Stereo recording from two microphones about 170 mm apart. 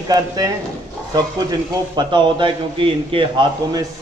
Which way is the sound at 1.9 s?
25° right (ahead or behind).